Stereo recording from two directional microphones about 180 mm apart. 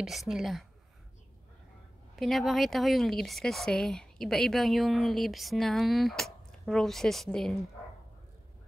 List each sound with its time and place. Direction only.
0.0 s speech: centre (ahead or behind)
2.1 s speech: centre (ahead or behind)